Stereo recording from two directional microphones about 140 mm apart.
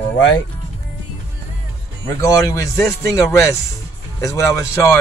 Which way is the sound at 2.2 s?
25° left (ahead or behind).